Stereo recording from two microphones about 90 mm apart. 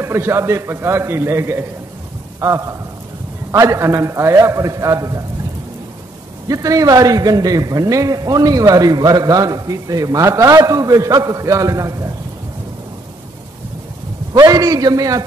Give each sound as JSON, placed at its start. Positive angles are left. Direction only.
{"t": 0.0, "sound": "a man's voice", "side_deg": -30}
{"t": 6.4, "sound": "a man's voice", "side_deg": -40}
{"t": 14.3, "sound": "a man's voice", "side_deg": -40}